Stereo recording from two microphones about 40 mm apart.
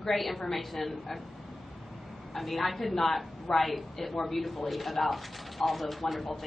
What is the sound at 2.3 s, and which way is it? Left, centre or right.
A woman's voice, centre.